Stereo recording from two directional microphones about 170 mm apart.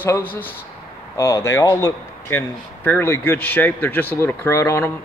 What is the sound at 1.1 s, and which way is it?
Speech, 20° left (ahead or behind).